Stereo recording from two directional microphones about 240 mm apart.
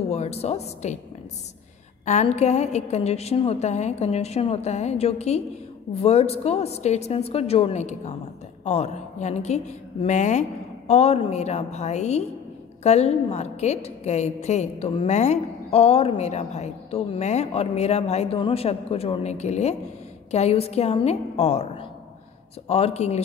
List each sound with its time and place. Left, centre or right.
0.1 s a woman's voice: left
2.0 s a woman's voice: left